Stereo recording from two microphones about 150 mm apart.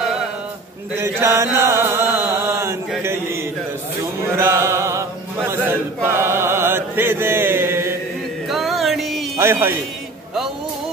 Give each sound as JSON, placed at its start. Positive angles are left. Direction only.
{"t": 1.2, "sound": "chant", "side_deg": -20}
{"t": 4.2, "sound": "a sound", "side_deg": -20}
{"t": 6.0, "sound": "chant", "side_deg": -15}
{"t": 8.5, "sound": "music", "side_deg": 0}
{"t": 9.4, "sound": "speech", "side_deg": -15}